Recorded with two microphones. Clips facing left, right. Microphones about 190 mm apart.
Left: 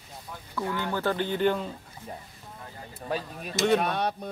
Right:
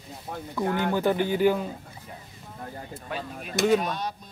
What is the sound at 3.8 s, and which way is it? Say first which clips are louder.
Speech: left 3 dB; 60° left (ahead or behind).